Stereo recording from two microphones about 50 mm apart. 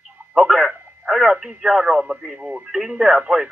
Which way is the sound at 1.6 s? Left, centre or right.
Centre.